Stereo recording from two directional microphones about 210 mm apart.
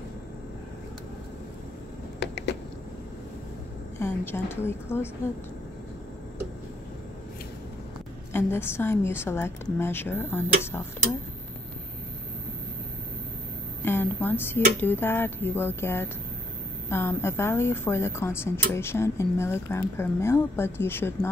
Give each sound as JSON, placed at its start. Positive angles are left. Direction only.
{"t": 2.1, "sound": "a sound", "side_deg": 55}
{"t": 4.0, "sound": "speech", "side_deg": 10}
{"t": 8.3, "sound": "speech", "side_deg": 10}
{"t": 13.8, "sound": "a woman's voice", "side_deg": 10}